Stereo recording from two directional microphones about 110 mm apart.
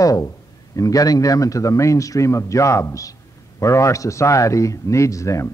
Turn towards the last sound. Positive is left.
turn(degrees=30)  # may be behind; listen again after turning